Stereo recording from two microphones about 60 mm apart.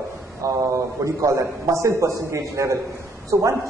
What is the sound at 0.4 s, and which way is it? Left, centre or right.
A man's voice, right.